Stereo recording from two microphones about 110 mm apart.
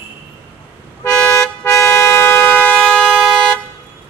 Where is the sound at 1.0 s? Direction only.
25° left (ahead or behind); by 3.6 s 5° left (ahead or behind).